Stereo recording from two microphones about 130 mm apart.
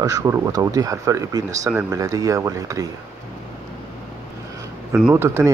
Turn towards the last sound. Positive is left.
turn(degrees=-20)  # may be behind; listen again after turning